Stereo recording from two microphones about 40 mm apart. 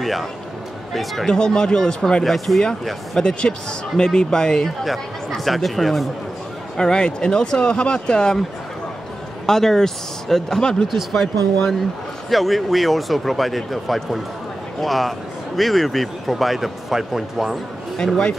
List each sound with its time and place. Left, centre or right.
0.0 s a man's voice: centre
1.2 s speech: centre
2.2 s a man's voice: centre
3.2 s speech: left
4.8 s a man's voice: centre
6.8 s speech: left
9.5 s speech: centre
10.9 s a man's voice: centre
11.1 s a man's voice: centre
17.9 s speech: centre